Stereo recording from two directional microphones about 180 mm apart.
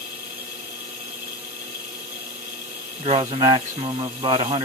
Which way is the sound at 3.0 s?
35° right (ahead or behind).